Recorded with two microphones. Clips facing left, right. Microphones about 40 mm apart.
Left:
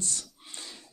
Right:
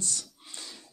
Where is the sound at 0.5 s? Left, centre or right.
Centre.